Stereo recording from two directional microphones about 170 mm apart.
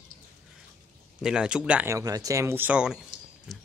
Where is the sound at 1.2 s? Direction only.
5° right (ahead or behind).